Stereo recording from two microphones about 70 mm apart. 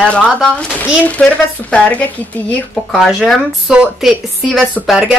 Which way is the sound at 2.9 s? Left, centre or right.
Centre.